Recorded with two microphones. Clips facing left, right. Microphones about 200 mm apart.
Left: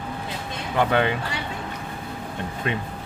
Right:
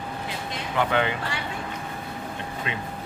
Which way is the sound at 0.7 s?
50° left (ahead or behind).